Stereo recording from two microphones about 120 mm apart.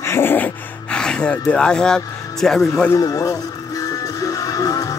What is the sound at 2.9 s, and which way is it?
Speech, 30° left (ahead or behind).